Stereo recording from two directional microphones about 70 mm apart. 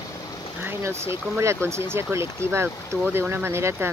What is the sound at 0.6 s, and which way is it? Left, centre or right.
Speech, right.